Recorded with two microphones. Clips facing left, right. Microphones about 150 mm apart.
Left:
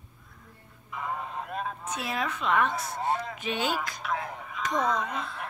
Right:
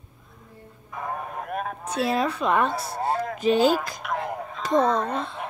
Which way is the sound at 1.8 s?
30° right (ahead or behind).